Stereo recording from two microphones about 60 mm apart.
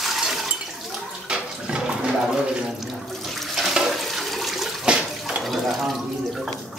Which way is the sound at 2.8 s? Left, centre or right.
Centre.